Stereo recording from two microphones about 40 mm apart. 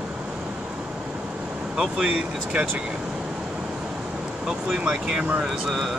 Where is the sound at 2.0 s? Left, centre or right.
Right.